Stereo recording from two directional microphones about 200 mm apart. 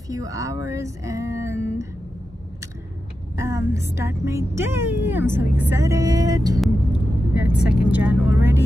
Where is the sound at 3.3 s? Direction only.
15° right (ahead or behind).